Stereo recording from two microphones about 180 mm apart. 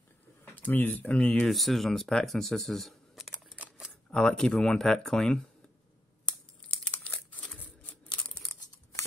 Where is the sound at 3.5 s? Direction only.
10° right (ahead or behind).